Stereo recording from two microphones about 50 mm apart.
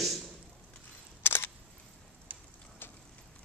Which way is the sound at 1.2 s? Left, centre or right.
Left.